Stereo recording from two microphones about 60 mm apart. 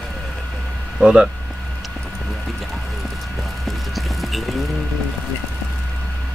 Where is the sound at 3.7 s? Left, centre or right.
Centre.